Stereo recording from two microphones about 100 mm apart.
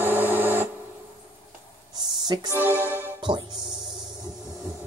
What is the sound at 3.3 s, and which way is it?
Music, 50° right (ahead or behind).